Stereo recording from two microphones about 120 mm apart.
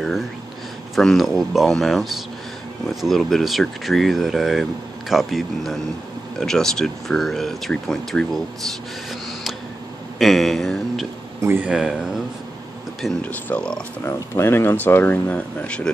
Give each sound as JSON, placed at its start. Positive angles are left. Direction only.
{"t": 0.9, "sound": "speech", "side_deg": 0}
{"t": 10.1, "sound": "speech", "side_deg": 0}
{"t": 11.4, "sound": "speech", "side_deg": -20}
{"t": 11.7, "sound": "speech", "side_deg": -5}
{"t": 13.2, "sound": "speech", "side_deg": 15}
{"t": 14.0, "sound": "speech", "side_deg": 20}